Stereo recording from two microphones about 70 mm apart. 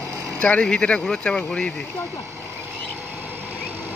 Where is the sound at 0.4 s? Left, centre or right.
Centre.